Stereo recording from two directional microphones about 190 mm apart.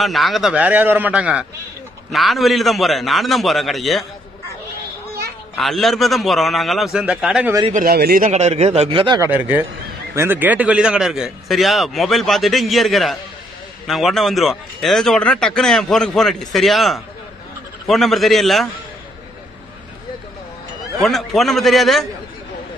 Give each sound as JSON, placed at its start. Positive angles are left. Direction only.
{"t": 0.0, "sound": "speech", "side_deg": 0}
{"t": 5.6, "sound": "speech", "side_deg": 0}
{"t": 7.7, "sound": "speech", "side_deg": -50}
{"t": 8.3, "sound": "speech", "side_deg": -35}
{"t": 9.3, "sound": "speech", "side_deg": -10}
{"t": 21.0, "sound": "speech", "side_deg": 0}